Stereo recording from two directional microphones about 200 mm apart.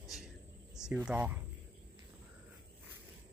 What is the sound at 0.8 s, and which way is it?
Speech, 5° right (ahead or behind).